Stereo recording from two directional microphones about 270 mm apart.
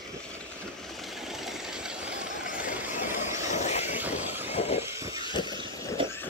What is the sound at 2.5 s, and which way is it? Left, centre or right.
Vehicle, left.